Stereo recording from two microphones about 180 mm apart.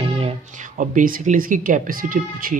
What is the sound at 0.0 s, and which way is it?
Speech, 40° right (ahead or behind).